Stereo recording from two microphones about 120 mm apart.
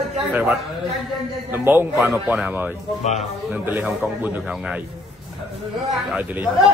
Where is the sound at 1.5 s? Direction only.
15° right (ahead or behind).